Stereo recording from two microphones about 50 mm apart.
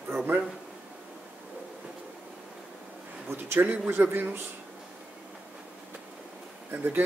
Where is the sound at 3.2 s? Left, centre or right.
Right.